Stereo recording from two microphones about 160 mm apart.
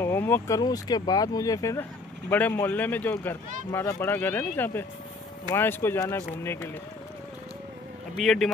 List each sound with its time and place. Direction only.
0.0 s vehicle: 15° left (ahead or behind)
0.6 s speech: 25° left (ahead or behind)
8.2 s speech: centre (ahead or behind)